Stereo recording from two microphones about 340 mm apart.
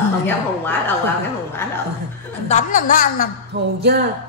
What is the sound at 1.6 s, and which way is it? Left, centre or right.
Speech, centre.